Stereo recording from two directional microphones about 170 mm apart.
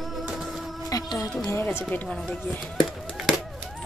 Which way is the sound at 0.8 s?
20° left (ahead or behind).